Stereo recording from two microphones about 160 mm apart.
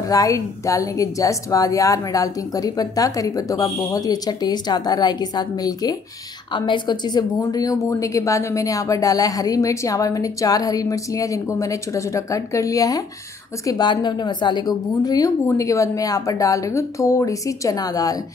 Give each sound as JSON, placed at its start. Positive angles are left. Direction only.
{"t": 0.1, "sound": "speech", "side_deg": 20}